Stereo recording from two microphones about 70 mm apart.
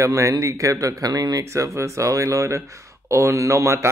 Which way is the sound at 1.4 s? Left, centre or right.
Right.